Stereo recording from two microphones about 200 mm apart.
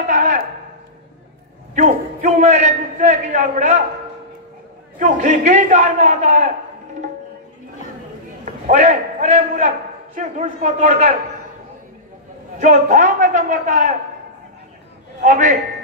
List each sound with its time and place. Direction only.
0.0 s a sound: 40° right (ahead or behind)
1.8 s a man's voice: 40° right (ahead or behind)
4.9 s a man's voice: 40° right (ahead or behind)
8.5 s a man's voice: 35° right (ahead or behind)
12.5 s a man's voice: 40° right (ahead or behind)
15.1 s a man's voice: 40° right (ahead or behind)